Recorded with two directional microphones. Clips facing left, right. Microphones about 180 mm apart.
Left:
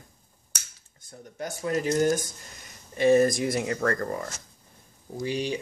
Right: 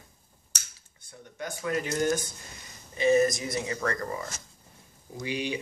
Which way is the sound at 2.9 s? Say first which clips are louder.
Left 3 dB; 55° left (ahead or behind).